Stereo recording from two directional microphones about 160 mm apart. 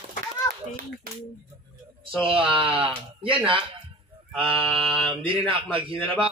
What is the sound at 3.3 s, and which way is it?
Speech, 35° right (ahead or behind).